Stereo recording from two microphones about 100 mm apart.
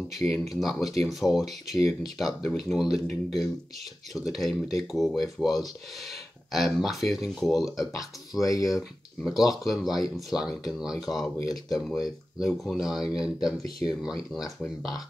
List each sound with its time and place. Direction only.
0.2 s speech: centre (ahead or behind)
8.5 s speech: 35° left (ahead or behind)
8.7 s speech: centre (ahead or behind)